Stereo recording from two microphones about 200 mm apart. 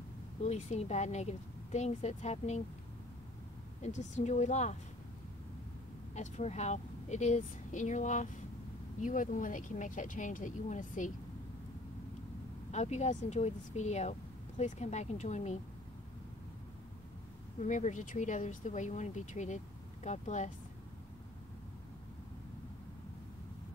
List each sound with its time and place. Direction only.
0.4 s speech: 35° left (ahead or behind)
3.8 s speech: 35° left (ahead or behind)
6.1 s speech: 35° left (ahead or behind)
12.7 s speech: 35° left (ahead or behind)
17.6 s speech: 40° left (ahead or behind)